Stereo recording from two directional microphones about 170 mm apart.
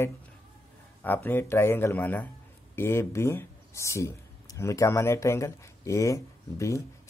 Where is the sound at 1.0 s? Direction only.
10° left (ahead or behind).